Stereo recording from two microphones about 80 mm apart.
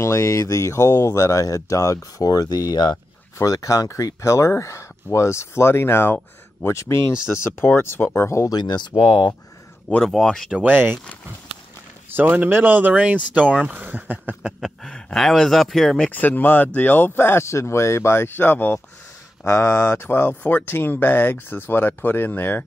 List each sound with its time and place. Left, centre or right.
0.0 s speech: left
3.3 s speech: left
8.5 s speech: left
10.0 s speech: centre
10.6 s speech: right
12.1 s speech: right
14.8 s speech: centre
16.1 s speech: left